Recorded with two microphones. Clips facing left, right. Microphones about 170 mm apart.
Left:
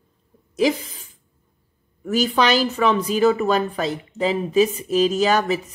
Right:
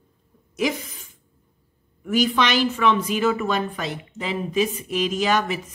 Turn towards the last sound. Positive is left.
turn(degrees=40)  # may be behind; listen again after turning